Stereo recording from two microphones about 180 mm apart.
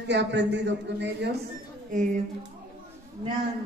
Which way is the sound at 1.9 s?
45° right (ahead or behind).